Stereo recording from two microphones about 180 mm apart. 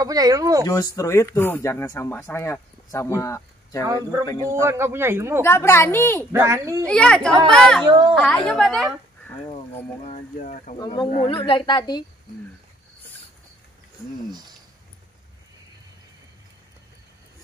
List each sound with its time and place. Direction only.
0.0 s speech: 20° right (ahead or behind)
0.7 s speech: 15° left (ahead or behind)
4.5 s speech: 15° right (ahead or behind)
5.4 s speech: 15° left (ahead or behind)
6.3 s speech: 15° right (ahead or behind)
6.9 s speech: 5° left (ahead or behind)
7.8 s speech: 25° right (ahead or behind)
8.1 s speech: centre (ahead or behind)
10.0 s speech: 40° left (ahead or behind)
10.8 s speech: 25° left (ahead or behind)